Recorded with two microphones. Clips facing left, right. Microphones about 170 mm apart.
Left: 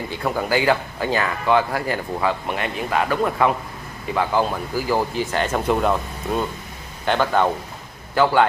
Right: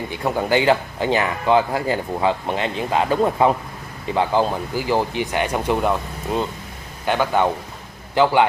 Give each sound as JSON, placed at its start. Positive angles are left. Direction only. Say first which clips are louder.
{"t": 0.1, "sound": "a man's voice", "louder": "right 2 dB", "side_deg": -20}